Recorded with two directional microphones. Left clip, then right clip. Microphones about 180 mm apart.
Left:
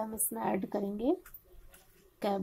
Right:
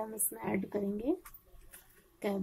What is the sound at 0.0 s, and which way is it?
Speech, 20° left (ahead or behind).